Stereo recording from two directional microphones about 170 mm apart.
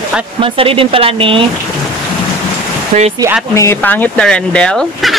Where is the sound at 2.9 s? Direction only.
45° right (ahead or behind).